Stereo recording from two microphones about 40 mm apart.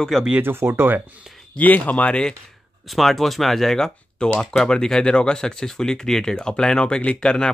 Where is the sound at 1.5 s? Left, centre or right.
Left.